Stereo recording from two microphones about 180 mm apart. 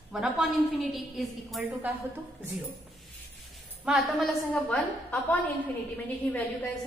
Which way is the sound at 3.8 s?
Centre (ahead or behind).